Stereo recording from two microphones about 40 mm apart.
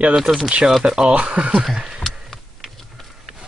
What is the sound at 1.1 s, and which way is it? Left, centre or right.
Speech, right.